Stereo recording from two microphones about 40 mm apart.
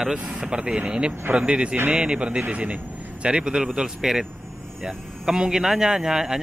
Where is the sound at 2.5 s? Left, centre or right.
Right.